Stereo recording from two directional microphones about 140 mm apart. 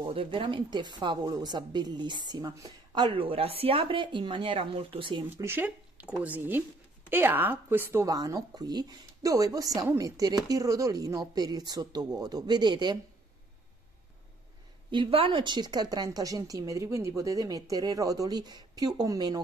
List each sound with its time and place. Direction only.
0.0 s speech: 40° right (ahead or behind)
5.4 s a woman's voice: 15° right (ahead or behind); by 13.0 s 30° right (ahead or behind)
14.9 s a woman's voice: 40° right (ahead or behind)